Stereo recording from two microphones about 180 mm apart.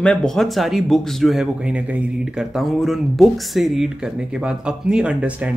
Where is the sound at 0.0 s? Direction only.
5° left (ahead or behind).